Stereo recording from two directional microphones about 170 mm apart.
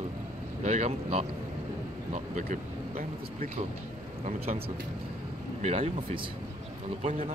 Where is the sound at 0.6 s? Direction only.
45° right (ahead or behind).